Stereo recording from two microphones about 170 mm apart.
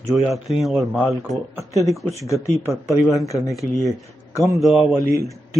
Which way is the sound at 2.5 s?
20° right (ahead or behind).